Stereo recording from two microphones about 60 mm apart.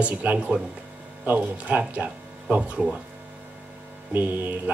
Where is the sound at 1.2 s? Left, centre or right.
Right.